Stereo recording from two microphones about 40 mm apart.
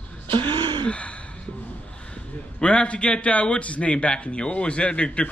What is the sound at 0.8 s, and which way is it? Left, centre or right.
Gasp, left.